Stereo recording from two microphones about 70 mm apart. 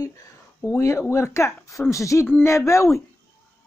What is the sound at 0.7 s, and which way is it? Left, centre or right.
Speech, left.